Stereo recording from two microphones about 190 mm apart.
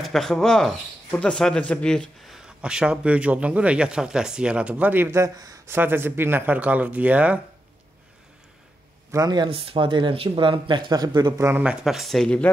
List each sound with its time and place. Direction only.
0.0 s speech: centre (ahead or behind)
9.1 s speech: 20° right (ahead or behind); by 12.4 s 5° left (ahead or behind)